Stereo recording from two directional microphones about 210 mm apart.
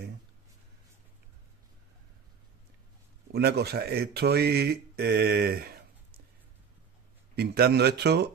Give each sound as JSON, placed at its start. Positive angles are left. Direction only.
{"t": 3.3, "sound": "speech", "side_deg": -50}
{"t": 7.3, "sound": "speech", "side_deg": -50}